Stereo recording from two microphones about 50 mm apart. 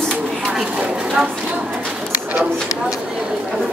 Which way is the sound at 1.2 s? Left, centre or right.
Centre.